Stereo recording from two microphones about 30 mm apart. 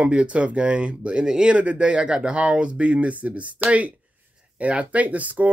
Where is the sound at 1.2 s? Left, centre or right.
Right.